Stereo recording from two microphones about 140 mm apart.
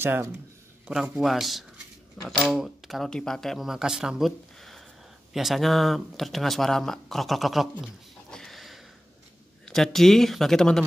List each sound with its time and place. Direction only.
0.0 s speech: 15° right (ahead or behind)
0.8 s speech: 5° right (ahead or behind)